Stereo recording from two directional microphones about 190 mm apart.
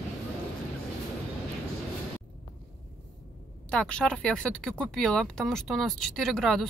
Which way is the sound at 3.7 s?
5° left (ahead or behind).